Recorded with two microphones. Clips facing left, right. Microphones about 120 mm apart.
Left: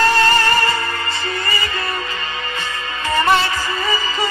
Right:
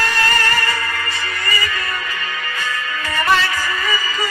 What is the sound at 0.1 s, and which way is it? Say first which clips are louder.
Music: left 4 dB; 30° left (ahead or behind).